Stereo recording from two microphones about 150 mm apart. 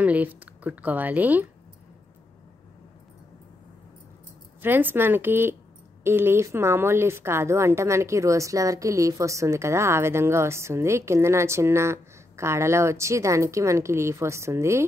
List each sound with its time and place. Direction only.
0.0 s speech: 10° right (ahead or behind)
4.6 s a woman's voice: 15° right (ahead or behind)